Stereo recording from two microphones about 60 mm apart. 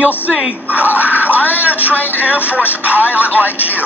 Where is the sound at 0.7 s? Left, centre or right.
Right.